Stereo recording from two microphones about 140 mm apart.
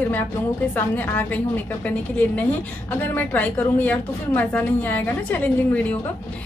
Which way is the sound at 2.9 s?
15° left (ahead or behind).